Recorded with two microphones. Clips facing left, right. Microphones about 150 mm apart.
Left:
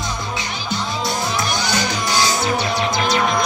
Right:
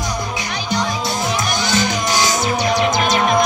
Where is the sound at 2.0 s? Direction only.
15° right (ahead or behind).